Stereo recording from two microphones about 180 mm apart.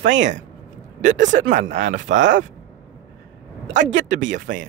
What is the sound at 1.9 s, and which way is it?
Speech, 90° right.